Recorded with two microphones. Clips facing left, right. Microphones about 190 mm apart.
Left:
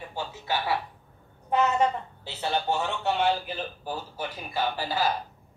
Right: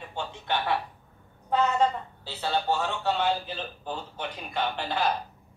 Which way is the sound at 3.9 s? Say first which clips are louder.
Right 1 dB; 5° left (ahead or behind).